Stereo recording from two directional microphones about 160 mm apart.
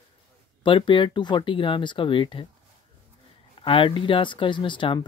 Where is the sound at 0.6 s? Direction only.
30° left (ahead or behind).